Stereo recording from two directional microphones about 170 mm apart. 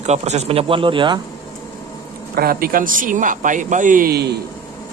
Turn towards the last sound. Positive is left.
turn(degrees=-70)  # may be behind; listen again after turning